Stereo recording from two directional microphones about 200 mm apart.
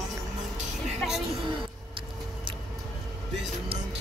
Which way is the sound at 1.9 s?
25° right (ahead or behind).